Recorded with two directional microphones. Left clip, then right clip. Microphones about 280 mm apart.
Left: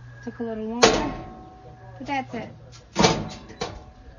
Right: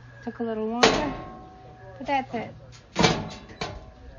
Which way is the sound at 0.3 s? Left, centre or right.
Centre.